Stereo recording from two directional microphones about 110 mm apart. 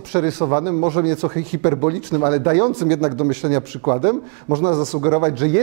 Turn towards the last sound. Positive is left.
turn(degrees=10)  # may be behind; listen again after turning